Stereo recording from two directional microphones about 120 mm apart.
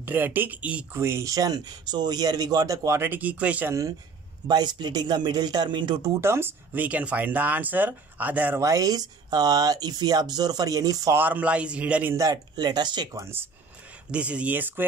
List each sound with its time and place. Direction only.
0.0 s speech: 15° right (ahead or behind)
1.0 s speech: 25° right (ahead or behind)
4.5 s speech: 35° right (ahead or behind)
6.2 s speech: 20° right (ahead or behind)
8.5 s speech: 25° right (ahead or behind)
11.1 s speech: 15° right (ahead or behind)
12.2 s speech: 30° right (ahead or behind)
13.2 s speech: 20° right (ahead or behind)